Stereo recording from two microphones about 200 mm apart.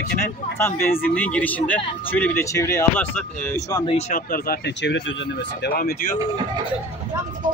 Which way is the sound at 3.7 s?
25° left (ahead or behind).